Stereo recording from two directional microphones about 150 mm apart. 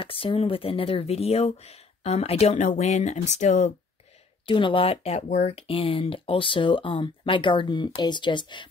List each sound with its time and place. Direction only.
0.0 s speech: 35° left (ahead or behind); by 3.7 s 55° left (ahead or behind)
4.5 s speech: 35° left (ahead or behind)